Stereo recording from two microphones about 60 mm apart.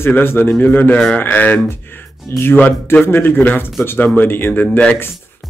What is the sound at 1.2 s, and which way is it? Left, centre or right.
Speech, left.